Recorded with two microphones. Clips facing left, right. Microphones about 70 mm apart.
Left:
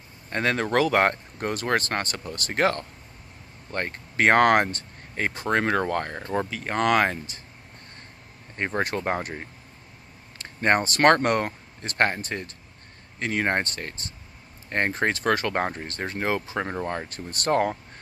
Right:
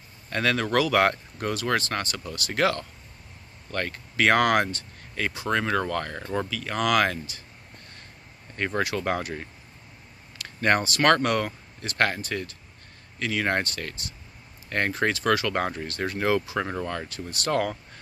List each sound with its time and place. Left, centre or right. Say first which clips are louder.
0.3 s speech: left 1 dB; left
8.5 s speech: even; left
10.4 s speech: left 1 dB; left
17.1 s speech: left 3 dB; left